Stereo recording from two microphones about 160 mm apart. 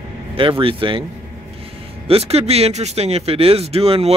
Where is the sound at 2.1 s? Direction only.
40° right (ahead or behind).